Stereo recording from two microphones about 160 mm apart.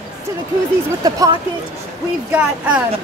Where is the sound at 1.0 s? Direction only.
20° right (ahead or behind).